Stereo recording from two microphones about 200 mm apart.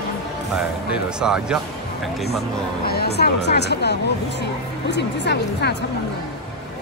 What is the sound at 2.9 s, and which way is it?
Speech, 55° left (ahead or behind).